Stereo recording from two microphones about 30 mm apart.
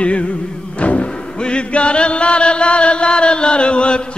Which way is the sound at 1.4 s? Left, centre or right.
Left.